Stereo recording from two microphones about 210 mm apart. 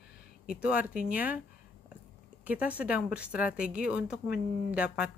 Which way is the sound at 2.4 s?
5° right (ahead or behind).